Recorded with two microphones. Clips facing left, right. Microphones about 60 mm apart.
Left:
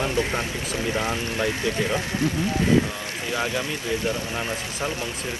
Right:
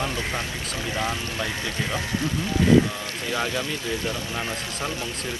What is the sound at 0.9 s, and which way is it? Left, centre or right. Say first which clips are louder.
Speech: right 1 dB; left.